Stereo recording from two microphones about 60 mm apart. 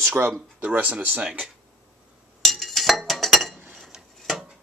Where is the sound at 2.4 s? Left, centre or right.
Centre.